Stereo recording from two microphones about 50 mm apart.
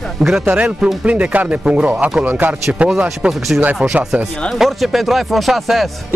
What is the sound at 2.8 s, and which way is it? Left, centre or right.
Speech, right.